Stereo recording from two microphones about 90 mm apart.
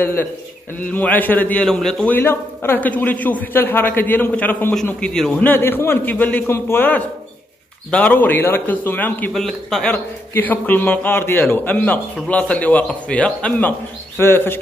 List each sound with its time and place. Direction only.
0.0 s a man's voice: 25° left (ahead or behind); by 2.0 s 5° left (ahead or behind)
2.0 s a man's voice: 25° left (ahead or behind)
5.0 s a man's voice: 5° left (ahead or behind)
5.4 s a man's voice: 25° left (ahead or behind)
9.3 s a man's voice: 5° left (ahead or behind)
10.3 s a man's voice: 20° left (ahead or behind)